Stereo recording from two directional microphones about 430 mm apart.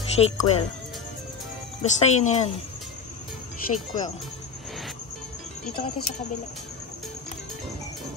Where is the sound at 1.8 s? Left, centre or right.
Centre.